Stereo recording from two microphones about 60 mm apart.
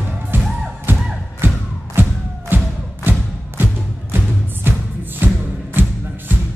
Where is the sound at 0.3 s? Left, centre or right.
Right.